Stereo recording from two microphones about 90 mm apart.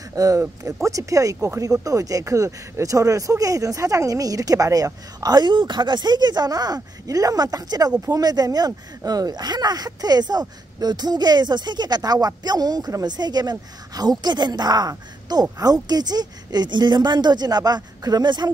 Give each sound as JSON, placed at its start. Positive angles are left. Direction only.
{"t": 0.1, "sound": "speech", "side_deg": -40}